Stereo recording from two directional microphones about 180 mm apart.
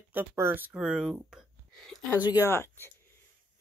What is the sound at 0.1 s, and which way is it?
Speech, 10° right (ahead or behind).